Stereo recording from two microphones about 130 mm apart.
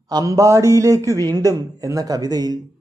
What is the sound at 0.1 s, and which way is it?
A man's voice, 25° right (ahead or behind).